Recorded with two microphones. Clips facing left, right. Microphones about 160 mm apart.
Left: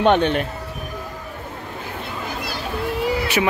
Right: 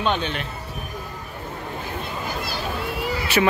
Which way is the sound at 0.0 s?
65° left (ahead or behind).